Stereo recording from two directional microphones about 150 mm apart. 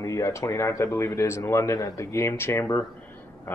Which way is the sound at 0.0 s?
20° left (ahead or behind).